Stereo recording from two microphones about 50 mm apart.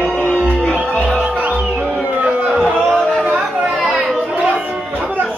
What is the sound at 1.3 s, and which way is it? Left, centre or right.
Music, right.